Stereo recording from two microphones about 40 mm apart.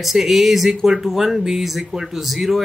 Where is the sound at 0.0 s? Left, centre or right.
Centre.